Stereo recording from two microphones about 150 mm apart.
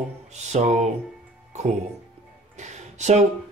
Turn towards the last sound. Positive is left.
turn(degrees=-50)  # may be behind; listen again after turning